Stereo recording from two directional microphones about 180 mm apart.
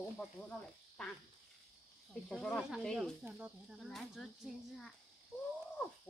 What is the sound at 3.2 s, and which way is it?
Speech, 10° right (ahead or behind).